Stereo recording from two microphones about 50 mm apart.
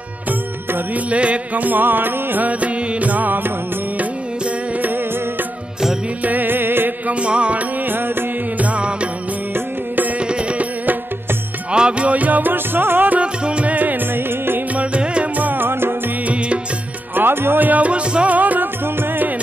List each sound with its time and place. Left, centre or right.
1.1 s music: right
6.2 s music: right
7.1 s music: right
11.7 s music: right
13.2 s music: right
14.8 s music: right
15.3 s music: right
17.1 s music: right